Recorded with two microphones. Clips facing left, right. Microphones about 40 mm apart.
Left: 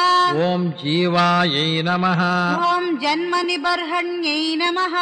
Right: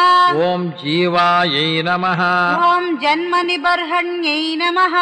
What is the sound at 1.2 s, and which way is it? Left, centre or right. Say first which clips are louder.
Mantra: right 4 dB; centre.